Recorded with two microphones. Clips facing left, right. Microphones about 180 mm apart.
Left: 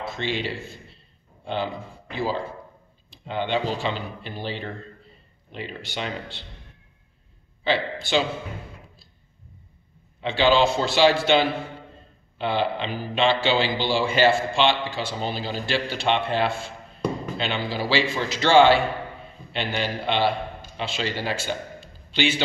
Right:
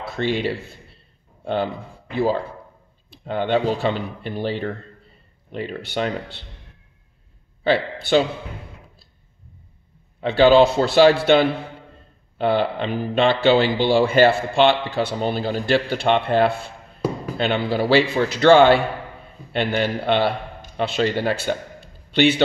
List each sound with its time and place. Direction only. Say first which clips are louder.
0.2 s speech: right 7 dB; 45° right (ahead or behind)
1.4 s a man's voice: right 5 dB; 50° right (ahead or behind)
7.6 s speech: right 5 dB; 55° right (ahead or behind)
10.3 s a man's voice: right 6 dB; 50° right (ahead or behind)